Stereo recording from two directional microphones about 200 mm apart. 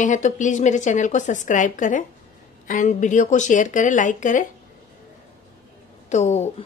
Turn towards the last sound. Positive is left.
turn(degrees=35)  # may be behind; listen again after turning